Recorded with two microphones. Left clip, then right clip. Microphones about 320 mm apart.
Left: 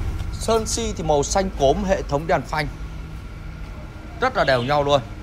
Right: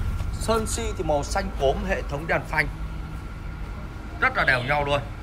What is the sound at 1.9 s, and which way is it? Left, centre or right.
Speech, centre.